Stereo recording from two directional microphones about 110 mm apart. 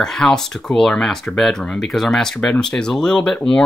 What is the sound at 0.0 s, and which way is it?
Speech, 5° left (ahead or behind).